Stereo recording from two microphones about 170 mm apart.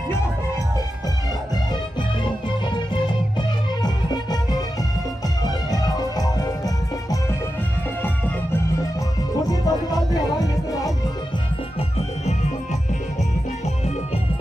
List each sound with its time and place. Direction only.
3.3 s music: 25° left (ahead or behind)
5.7 s music: 20° left (ahead or behind)
9.5 s music: 20° left (ahead or behind)